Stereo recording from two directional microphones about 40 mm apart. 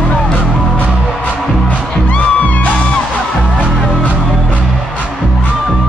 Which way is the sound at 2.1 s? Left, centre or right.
Left.